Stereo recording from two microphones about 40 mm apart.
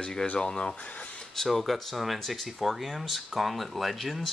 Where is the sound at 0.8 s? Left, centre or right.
Left.